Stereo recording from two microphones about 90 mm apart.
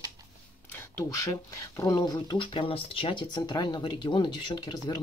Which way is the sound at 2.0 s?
55° left (ahead or behind).